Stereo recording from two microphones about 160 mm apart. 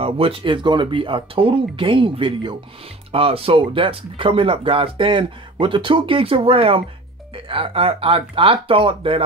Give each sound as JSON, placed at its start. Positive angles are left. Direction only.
{"t": 0.0, "sound": "speech", "side_deg": -35}